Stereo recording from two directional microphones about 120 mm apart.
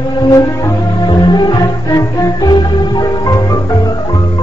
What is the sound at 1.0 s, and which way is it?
Music, 40° left (ahead or behind).